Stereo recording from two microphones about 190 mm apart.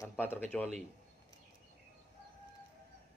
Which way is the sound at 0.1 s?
10° left (ahead or behind).